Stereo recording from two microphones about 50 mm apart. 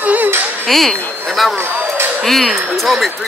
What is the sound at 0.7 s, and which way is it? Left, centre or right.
Speech, centre.